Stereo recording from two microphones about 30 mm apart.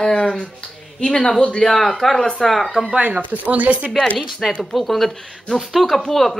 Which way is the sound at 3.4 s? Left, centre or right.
Right.